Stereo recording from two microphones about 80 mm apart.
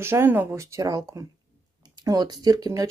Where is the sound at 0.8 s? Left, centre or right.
Right.